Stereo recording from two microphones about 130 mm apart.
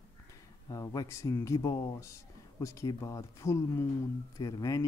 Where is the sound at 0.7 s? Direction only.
30° left (ahead or behind).